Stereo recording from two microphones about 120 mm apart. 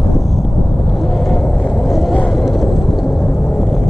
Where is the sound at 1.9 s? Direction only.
Centre (ahead or behind).